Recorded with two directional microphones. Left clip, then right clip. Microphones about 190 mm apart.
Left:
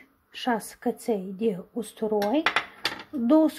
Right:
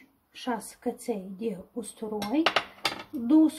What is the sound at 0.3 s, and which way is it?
Speech, 50° left (ahead or behind).